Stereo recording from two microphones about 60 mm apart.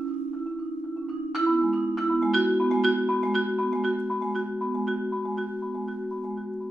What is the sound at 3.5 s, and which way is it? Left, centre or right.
Music, centre.